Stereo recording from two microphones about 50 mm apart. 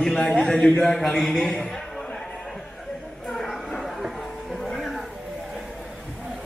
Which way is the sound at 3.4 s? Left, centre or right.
Centre.